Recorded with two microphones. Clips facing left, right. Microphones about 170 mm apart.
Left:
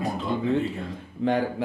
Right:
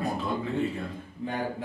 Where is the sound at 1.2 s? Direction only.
85° left.